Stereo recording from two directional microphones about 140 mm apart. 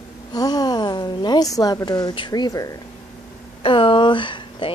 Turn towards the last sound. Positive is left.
turn(degrees=35)  # may be behind; listen again after turning